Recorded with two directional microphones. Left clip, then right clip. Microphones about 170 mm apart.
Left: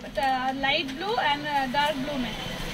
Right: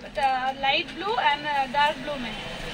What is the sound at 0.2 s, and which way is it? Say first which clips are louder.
A woman's voice: right 1 dB; 15° right (ahead or behind).